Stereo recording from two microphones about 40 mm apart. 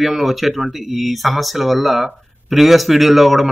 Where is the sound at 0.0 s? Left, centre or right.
Centre.